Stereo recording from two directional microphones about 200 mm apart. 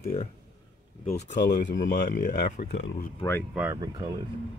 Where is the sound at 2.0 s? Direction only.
45° left (ahead or behind).